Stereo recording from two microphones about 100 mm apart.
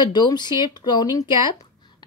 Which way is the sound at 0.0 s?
45° left (ahead or behind).